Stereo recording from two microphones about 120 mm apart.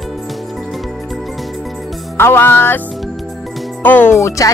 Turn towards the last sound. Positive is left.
turn(degrees=25)  # may be behind; listen again after turning